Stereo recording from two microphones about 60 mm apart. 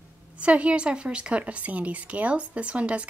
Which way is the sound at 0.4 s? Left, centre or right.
Centre.